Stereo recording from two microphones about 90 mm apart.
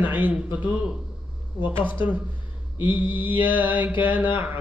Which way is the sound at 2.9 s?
65° left (ahead or behind).